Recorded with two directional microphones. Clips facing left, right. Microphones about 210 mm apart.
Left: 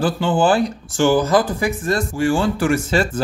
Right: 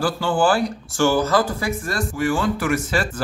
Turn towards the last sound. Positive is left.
turn(degrees=25)  # may be behind; listen again after turning